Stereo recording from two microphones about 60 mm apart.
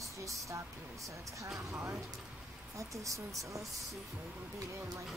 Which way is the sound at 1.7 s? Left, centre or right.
Right.